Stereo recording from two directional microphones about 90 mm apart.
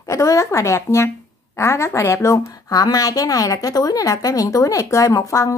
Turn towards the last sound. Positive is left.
turn(degrees=35)  # may be behind; listen again after turning